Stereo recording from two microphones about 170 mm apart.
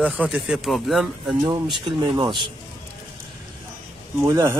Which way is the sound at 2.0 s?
30° right (ahead or behind).